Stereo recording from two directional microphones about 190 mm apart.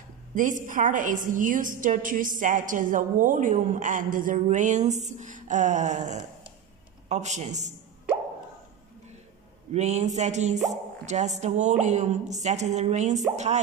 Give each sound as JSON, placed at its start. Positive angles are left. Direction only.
{"t": 0.3, "sound": "a woman's voice", "side_deg": -40}
{"t": 9.7, "sound": "speech", "side_deg": -35}